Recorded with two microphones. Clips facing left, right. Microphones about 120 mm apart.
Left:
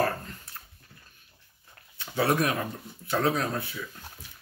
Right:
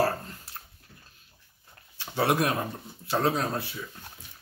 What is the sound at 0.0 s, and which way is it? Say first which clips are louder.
Dog: right 1 dB; 30° right (ahead or behind).